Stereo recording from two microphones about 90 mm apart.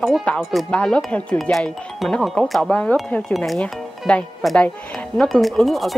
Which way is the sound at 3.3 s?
Centre (ahead or behind).